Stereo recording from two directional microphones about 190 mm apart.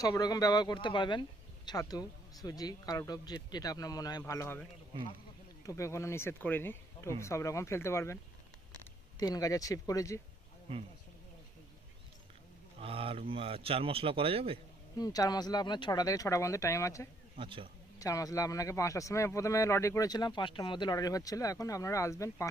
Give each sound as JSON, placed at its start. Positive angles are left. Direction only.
{"t": 0.0, "sound": "speech", "side_deg": 20}
{"t": 5.7, "sound": "a man's voice", "side_deg": 15}
{"t": 9.2, "sound": "speech", "side_deg": 20}
{"t": 12.8, "sound": "speech", "side_deg": -30}
{"t": 15.0, "sound": "speech", "side_deg": 20}
{"t": 17.4, "sound": "speech", "side_deg": -25}
{"t": 17.9, "sound": "a man's voice", "side_deg": 20}